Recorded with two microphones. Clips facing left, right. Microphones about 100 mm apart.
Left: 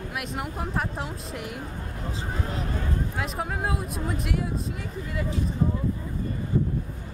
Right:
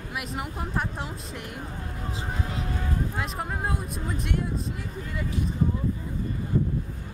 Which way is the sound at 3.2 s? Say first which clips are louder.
Left 1 dB; centre (ahead or behind).